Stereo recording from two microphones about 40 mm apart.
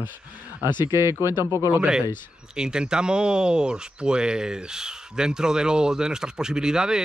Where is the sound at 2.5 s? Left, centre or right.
Right.